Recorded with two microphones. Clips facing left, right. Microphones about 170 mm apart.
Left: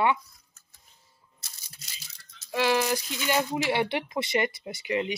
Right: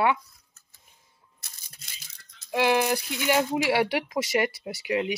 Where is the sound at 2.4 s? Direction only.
15° right (ahead or behind).